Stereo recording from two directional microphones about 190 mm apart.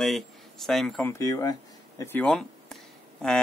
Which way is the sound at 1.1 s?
15° left (ahead or behind).